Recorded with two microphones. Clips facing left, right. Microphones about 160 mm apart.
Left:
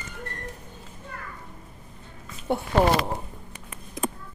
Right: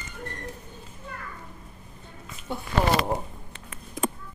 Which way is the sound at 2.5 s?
60° left (ahead or behind).